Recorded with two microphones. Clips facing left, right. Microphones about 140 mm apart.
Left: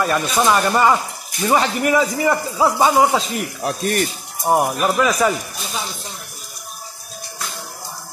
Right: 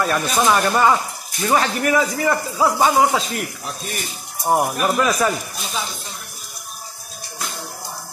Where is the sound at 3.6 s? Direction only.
60° left (ahead or behind).